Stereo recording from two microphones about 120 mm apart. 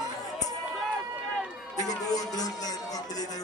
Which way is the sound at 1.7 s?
30° left (ahead or behind).